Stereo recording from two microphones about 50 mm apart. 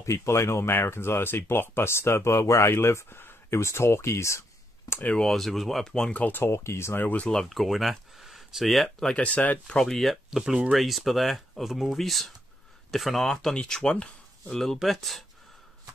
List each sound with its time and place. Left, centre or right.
0.0 s speech: left
2.7 s speech: left
3.1 s a sound: left
5.3 s speech: centre
6.3 s speech: left
7.0 s speech: left
7.2 s speech: centre
8.8 s speech: left
9.8 s speech: centre
10.3 s speech: centre
14.8 s speech: centre